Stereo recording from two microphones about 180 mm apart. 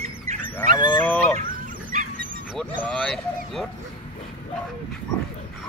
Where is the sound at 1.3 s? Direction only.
45° right (ahead or behind).